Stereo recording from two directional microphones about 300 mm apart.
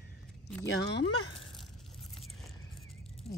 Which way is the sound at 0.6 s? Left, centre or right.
Left.